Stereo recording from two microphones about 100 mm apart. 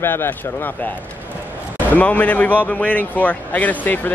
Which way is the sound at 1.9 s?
15° left (ahead or behind).